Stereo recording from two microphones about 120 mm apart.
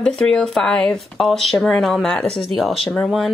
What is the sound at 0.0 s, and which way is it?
Speech, 5° left (ahead or behind).